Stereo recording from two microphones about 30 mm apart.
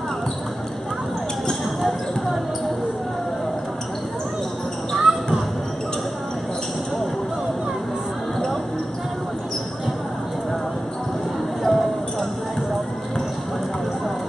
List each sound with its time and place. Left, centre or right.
1.8 s basketball bounce: centre
4.9 s basketball bounce: centre
11.6 s a sound: centre